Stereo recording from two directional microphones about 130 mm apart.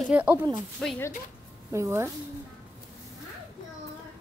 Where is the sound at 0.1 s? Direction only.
10° right (ahead or behind).